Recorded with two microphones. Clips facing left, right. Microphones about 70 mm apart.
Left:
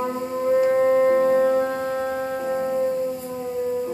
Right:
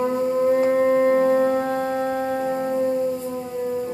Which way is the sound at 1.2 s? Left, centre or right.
Centre.